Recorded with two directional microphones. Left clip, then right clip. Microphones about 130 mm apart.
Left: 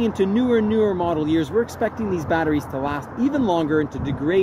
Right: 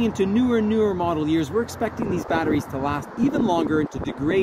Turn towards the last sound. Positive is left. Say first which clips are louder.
# left 2 dB
turn(degrees=-35)  # may be behind; listen again after turning